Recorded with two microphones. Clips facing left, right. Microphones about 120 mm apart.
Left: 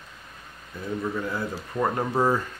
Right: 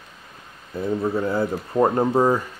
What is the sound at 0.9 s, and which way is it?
Speech, 35° right (ahead or behind).